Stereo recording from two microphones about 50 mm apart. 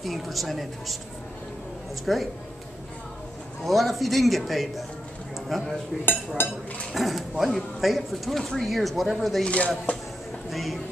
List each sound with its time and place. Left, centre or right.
0.0 s speech: centre
2.1 s speech: centre
3.6 s speech: centre
6.9 s speech: centre
9.4 s speech: left
10.5 s speech: centre